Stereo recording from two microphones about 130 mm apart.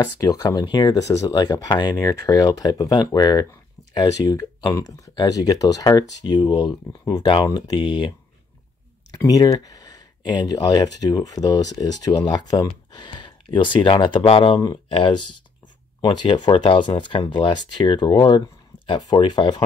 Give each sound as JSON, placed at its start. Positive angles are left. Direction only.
{"t": 0.2, "sound": "speech", "side_deg": 30}
{"t": 9.2, "sound": "speech", "side_deg": 25}